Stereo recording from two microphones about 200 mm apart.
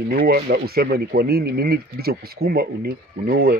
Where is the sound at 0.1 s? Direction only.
50° right (ahead or behind).